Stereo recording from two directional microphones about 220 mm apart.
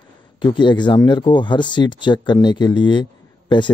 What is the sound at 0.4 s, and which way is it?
Speech, 20° left (ahead or behind).